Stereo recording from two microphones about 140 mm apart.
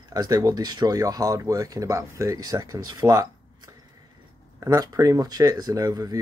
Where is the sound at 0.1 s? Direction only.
25° right (ahead or behind).